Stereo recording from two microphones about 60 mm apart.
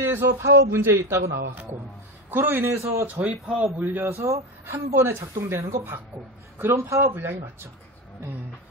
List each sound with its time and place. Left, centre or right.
0.0 s a woman's voice: right
2.3 s a man's voice: right
3.2 s a man's voice: right
4.2 s speech: right
4.7 s a woman's voice: right
7.2 s a man's voice: right